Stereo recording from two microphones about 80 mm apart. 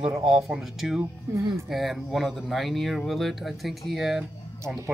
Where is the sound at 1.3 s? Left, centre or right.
Right.